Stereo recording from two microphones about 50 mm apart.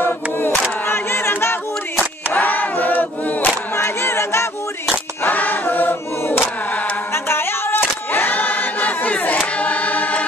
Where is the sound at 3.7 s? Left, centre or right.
Left.